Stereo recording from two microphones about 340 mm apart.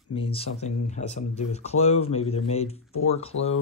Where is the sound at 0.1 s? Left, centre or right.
Centre.